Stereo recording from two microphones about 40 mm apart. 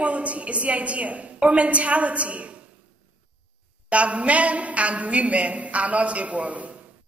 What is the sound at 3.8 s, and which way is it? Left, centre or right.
A woman's voice, right.